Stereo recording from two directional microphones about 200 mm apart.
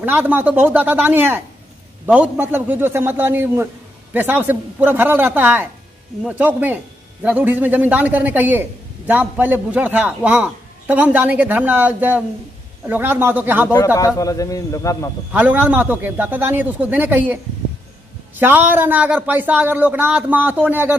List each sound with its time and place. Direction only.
0.0 s a man's voice: 10° right (ahead or behind)
13.9 s a man's voice: 15° left (ahead or behind)
15.3 s a man's voice: 10° right (ahead or behind)
18.4 s a man's voice: 10° right (ahead or behind)